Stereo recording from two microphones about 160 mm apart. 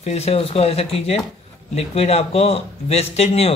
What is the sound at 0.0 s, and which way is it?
Speech, 40° left (ahead or behind).